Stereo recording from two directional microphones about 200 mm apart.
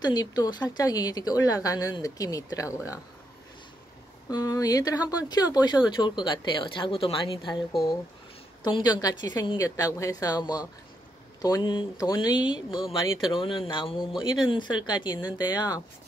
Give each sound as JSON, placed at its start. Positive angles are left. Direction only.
{"t": 0.0, "sound": "a woman's voice", "side_deg": 20}
{"t": 4.3, "sound": "a woman's voice", "side_deg": 20}
{"t": 8.6, "sound": "a woman's voice", "side_deg": 20}